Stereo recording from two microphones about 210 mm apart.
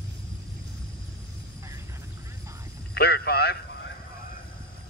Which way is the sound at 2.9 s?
50° left (ahead or behind).